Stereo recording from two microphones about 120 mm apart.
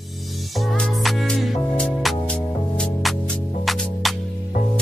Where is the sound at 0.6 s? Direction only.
5° left (ahead or behind).